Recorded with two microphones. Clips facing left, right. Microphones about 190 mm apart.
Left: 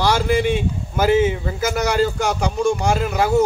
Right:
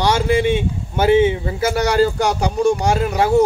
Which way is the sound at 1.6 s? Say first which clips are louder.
Right 3 dB; 35° right (ahead or behind).